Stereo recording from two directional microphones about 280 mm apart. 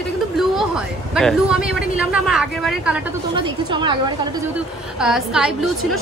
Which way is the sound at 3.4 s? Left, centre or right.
Centre.